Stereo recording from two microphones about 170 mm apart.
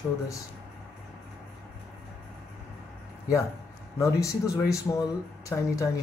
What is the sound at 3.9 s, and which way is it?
Speech, 20° left (ahead or behind).